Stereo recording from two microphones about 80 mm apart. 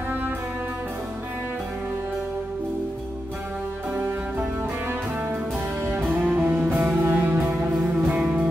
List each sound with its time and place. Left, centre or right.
3.9 s music: right